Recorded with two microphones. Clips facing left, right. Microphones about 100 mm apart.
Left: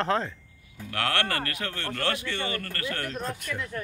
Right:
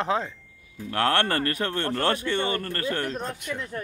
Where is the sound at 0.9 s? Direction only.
35° right (ahead or behind).